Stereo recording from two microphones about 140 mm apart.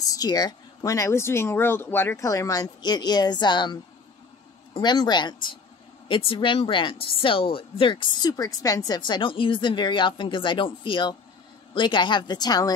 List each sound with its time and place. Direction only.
0.1 s speech: 25° left (ahead or behind)